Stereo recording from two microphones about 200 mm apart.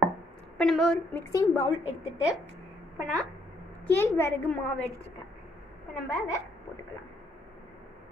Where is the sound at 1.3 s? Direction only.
15° left (ahead or behind).